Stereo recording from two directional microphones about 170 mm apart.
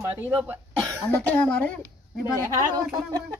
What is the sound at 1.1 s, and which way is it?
Speech, 10° left (ahead or behind).